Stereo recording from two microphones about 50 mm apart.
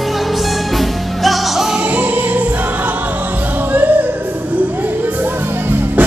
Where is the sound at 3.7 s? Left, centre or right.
Right.